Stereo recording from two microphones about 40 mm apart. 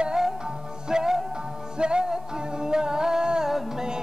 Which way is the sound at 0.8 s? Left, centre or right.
Centre.